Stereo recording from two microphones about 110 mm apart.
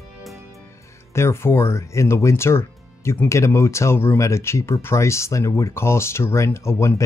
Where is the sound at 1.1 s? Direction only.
25° left (ahead or behind).